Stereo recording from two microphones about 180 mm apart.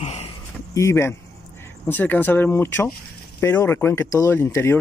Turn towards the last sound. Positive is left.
turn(degrees=15)  # may be behind; listen again after turning